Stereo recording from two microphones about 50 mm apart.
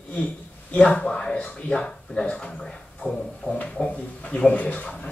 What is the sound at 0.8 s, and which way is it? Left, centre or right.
Speech, left.